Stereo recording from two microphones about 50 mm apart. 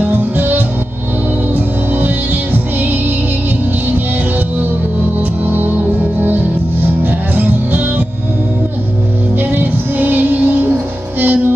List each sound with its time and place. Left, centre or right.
0.0 s music: right
5.4 s music: right
9.4 s music: right